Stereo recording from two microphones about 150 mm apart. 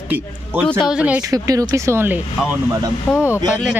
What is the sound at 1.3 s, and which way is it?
Speech, 25° right (ahead or behind).